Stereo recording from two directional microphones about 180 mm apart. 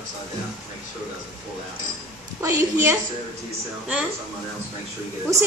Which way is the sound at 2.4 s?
15° right (ahead or behind).